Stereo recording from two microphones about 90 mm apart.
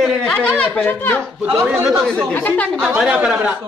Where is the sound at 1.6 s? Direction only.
10° right (ahead or behind).